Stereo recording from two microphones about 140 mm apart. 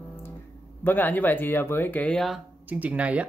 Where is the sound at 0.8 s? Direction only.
15° left (ahead or behind).